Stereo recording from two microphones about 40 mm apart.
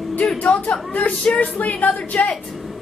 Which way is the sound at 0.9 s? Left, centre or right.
Left.